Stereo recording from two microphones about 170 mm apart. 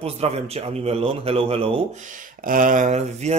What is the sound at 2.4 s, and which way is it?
Speech, 50° right (ahead or behind).